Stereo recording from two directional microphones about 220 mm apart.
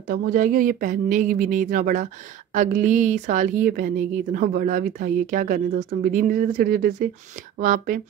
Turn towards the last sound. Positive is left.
turn(degrees=-35)  # may be behind; listen again after turning